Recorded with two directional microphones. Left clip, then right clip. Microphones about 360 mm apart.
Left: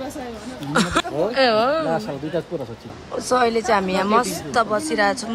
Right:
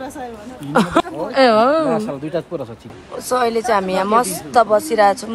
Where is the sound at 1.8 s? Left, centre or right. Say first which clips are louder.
Right 4 dB; right.